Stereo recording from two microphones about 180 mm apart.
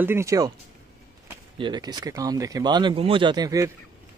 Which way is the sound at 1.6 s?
25° right (ahead or behind).